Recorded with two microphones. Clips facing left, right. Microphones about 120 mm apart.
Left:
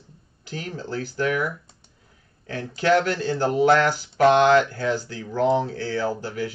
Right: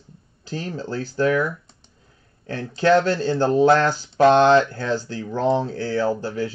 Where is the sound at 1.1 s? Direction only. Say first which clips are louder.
Right 5 dB; 30° right (ahead or behind).